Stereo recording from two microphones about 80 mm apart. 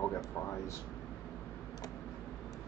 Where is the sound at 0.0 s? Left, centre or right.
Left.